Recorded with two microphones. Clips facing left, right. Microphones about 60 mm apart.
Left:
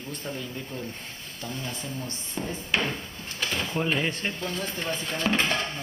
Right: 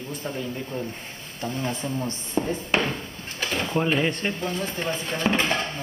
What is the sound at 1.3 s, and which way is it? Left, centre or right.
Speech, right.